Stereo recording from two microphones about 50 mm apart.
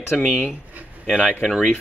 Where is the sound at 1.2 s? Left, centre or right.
Left.